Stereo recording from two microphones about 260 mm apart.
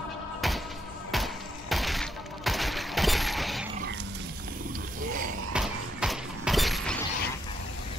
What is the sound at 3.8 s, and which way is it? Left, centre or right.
Wild animals, right.